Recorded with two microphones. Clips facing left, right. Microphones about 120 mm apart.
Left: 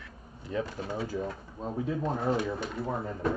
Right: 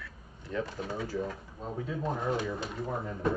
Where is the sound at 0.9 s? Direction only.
30° left (ahead or behind).